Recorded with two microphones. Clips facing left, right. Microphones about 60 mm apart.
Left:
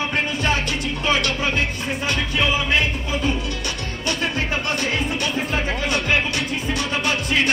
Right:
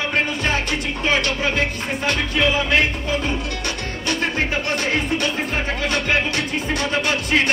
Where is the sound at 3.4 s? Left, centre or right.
Right.